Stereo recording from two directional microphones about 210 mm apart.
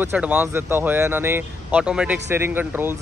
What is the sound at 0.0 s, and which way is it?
A man's voice, 10° right (ahead or behind).